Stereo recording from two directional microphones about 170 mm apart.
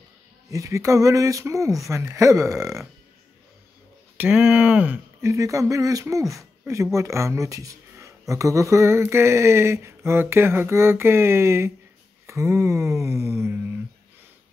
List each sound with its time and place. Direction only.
0.5 s speech: 20° right (ahead or behind)
4.2 s speech: 5° right (ahead or behind)